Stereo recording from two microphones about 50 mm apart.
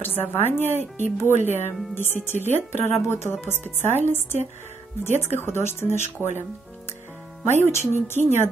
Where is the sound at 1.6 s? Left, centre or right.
Left.